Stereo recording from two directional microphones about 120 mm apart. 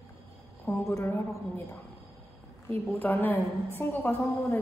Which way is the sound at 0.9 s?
20° left (ahead or behind).